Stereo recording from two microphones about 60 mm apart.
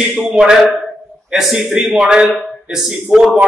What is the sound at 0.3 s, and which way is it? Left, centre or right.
A man's voice, centre.